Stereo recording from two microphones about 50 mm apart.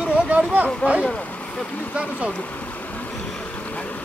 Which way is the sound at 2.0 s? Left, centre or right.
Right.